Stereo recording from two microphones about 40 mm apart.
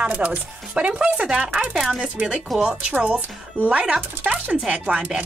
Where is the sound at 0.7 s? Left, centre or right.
Right.